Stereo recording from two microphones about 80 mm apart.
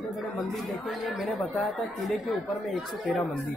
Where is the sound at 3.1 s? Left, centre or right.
Centre.